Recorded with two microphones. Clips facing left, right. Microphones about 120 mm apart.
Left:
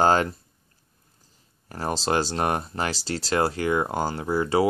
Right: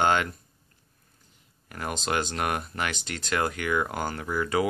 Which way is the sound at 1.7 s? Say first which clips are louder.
Left 5 dB; 35° left (ahead or behind).